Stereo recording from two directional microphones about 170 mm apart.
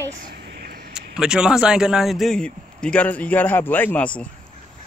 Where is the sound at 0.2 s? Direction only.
65° right (ahead or behind).